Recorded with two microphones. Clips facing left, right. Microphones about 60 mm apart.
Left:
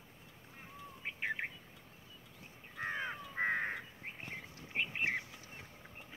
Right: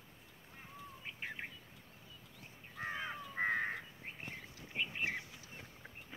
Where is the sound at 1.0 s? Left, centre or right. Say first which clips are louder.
Left 7 dB; left.